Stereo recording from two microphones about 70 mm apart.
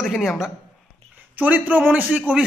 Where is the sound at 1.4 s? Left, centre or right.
Right.